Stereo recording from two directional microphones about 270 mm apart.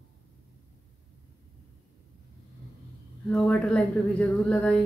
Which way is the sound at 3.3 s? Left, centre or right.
Centre.